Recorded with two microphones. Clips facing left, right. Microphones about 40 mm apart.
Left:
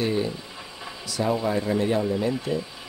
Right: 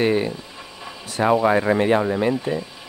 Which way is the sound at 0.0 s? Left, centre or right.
Right.